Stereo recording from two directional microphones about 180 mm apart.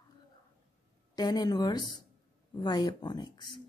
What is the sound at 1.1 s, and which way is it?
Speech, 20° left (ahead or behind).